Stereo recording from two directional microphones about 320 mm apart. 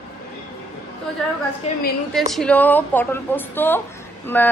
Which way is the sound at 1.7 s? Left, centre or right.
Left.